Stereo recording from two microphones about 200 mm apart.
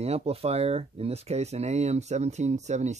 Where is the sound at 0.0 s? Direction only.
30° right (ahead or behind).